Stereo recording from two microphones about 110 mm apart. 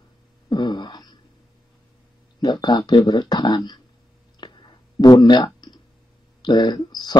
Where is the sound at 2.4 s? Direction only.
40° left (ahead or behind).